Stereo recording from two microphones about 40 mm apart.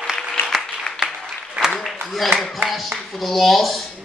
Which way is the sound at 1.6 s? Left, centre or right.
Right.